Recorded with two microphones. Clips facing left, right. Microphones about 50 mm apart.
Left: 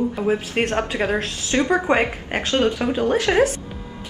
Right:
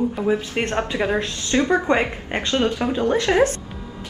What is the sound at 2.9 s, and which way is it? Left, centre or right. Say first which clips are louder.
Speech: even; centre.